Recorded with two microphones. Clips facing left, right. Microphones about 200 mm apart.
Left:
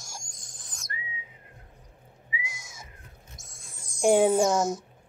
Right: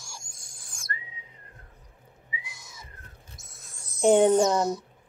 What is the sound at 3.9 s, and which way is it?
Speech, 10° left (ahead or behind).